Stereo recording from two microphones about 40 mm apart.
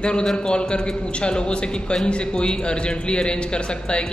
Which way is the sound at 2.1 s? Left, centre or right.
Left.